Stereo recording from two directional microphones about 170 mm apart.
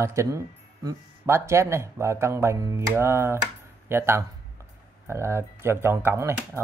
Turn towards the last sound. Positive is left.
turn(degrees=-15)  # may be behind; listen again after turning